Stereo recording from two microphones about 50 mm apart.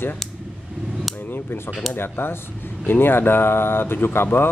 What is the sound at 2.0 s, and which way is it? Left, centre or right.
Speech, left.